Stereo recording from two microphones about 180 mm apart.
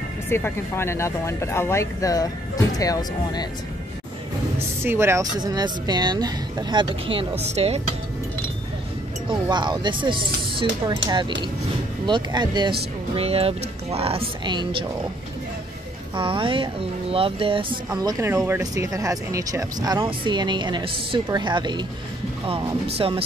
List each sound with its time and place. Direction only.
0.3 s speech: 15° left (ahead or behind)
4.8 s speech: 15° right (ahead or behind); by 7.8 s 35° right (ahead or behind)
9.3 s speech: 25° right (ahead or behind)
16.2 s speech: 30° right (ahead or behind)
18.0 s speech: 15° right (ahead or behind); by 23.2 s 30° right (ahead or behind)